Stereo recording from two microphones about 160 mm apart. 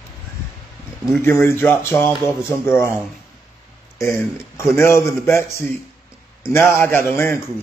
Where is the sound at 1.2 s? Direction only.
15° left (ahead or behind).